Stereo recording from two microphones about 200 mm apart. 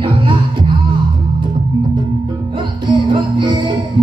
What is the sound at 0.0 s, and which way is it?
Music, 25° right (ahead or behind).